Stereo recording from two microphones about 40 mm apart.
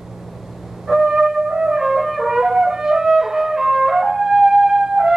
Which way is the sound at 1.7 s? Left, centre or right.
Centre.